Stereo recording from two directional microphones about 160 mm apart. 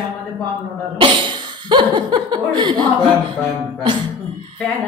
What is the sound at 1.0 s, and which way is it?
Speech, 30° right (ahead or behind).